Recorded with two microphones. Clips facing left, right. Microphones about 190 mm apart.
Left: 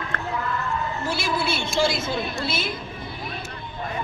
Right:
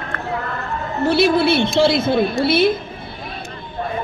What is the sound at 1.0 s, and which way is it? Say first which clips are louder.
A woman's voice: right 16 dB; 60° right (ahead or behind).